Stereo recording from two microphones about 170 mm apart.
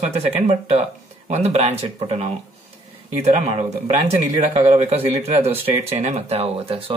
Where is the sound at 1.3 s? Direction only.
40° right (ahead or behind).